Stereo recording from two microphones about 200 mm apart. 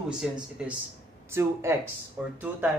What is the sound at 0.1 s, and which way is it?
Speech, 5° right (ahead or behind).